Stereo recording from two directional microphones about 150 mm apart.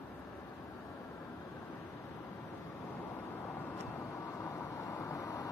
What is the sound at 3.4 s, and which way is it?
Vehicle, 15° left (ahead or behind).